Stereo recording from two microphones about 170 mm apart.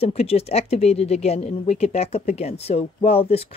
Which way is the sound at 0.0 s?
35° left (ahead or behind).